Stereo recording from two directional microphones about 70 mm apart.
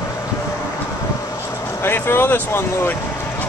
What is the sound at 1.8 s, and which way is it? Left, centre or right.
Speech, left.